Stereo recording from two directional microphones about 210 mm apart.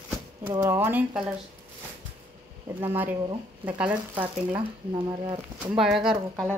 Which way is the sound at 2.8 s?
10° right (ahead or behind).